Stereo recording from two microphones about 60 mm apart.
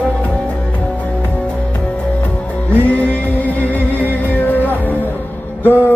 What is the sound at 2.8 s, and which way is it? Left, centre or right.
Music, left.